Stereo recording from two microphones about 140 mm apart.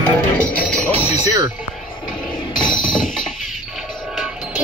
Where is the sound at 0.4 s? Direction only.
5° left (ahead or behind).